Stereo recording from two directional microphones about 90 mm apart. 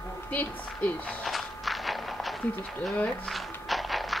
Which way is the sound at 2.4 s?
15° left (ahead or behind).